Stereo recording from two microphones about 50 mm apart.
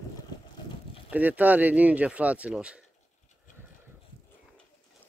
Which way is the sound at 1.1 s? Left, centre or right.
Right.